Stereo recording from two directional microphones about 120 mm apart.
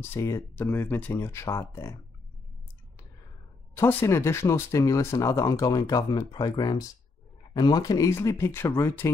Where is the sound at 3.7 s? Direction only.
20° left (ahead or behind).